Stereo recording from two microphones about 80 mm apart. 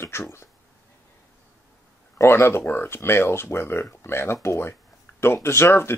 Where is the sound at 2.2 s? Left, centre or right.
Left.